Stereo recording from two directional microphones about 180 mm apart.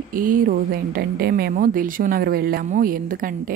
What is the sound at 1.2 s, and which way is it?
A woman's voice, 60° right (ahead or behind).